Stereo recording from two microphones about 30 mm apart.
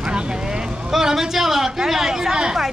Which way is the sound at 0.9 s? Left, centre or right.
Centre.